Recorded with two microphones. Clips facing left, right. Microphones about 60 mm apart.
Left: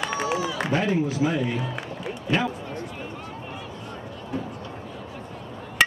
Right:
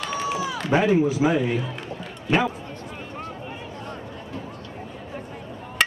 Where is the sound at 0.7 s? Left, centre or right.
Centre.